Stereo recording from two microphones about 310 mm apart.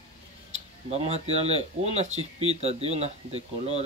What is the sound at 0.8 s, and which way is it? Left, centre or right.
Speech, centre.